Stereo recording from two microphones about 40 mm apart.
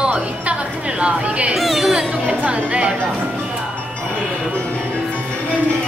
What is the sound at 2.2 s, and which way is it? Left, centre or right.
Music, right.